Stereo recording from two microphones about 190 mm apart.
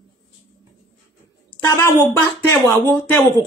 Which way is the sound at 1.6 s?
15° left (ahead or behind).